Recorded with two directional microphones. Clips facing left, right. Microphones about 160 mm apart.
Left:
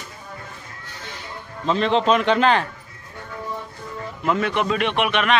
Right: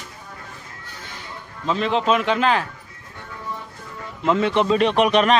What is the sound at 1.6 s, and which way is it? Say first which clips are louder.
A man's voice: left 2 dB; 5° right (ahead or behind).